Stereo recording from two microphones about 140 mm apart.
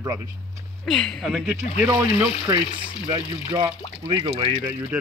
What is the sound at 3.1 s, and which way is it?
Speech, 35° right (ahead or behind).